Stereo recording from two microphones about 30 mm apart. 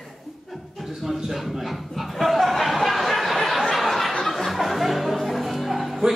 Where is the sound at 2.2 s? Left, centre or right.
Centre.